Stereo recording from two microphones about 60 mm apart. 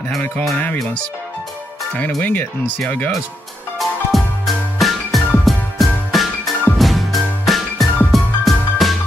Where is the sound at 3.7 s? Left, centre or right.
Centre.